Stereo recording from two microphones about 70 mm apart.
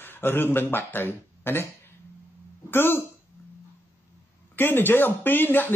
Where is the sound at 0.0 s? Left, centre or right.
Left.